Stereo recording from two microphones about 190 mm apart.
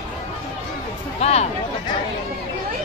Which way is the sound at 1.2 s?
35° left (ahead or behind).